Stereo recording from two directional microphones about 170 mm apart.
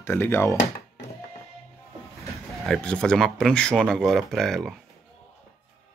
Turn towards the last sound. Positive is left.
turn(degrees=0)  # may be behind; listen again after turning